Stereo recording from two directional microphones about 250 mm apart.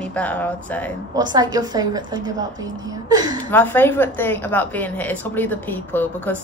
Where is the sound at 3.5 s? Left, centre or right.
Centre.